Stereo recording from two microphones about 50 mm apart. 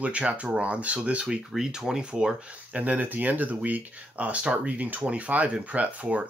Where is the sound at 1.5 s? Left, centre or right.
Centre; by 6.3 s right.